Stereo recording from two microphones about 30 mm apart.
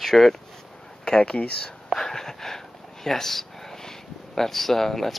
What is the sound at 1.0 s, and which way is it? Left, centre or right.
Speech, left.